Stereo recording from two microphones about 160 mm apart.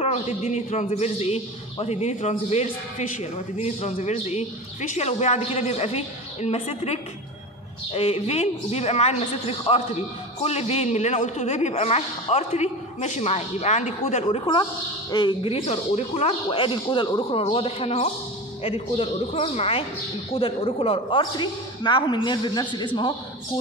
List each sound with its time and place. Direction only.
0.0 s a man's voice: 40° left (ahead or behind)